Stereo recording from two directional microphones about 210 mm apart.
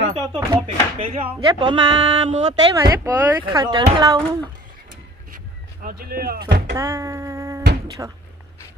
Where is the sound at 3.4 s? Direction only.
20° right (ahead or behind).